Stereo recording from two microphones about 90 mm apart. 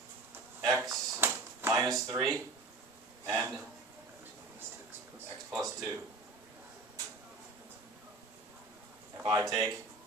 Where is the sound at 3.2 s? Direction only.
35° right (ahead or behind).